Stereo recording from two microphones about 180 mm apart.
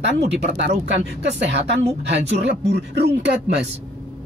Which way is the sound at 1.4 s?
70° right (ahead or behind).